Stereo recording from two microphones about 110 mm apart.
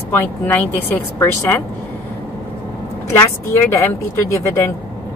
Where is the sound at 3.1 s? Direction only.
25° left (ahead or behind).